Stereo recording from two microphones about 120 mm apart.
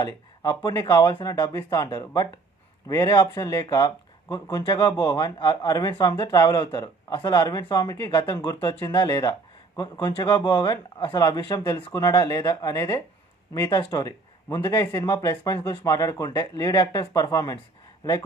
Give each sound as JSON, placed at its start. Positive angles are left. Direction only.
{"t": 0.0, "sound": "speech", "side_deg": 35}
{"t": 8.1, "sound": "speech", "side_deg": 40}
{"t": 13.7, "sound": "speech", "side_deg": 45}
{"t": 13.9, "sound": "speech", "side_deg": 25}